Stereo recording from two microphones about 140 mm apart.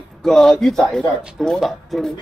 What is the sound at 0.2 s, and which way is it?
A man's voice, centre (ahead or behind).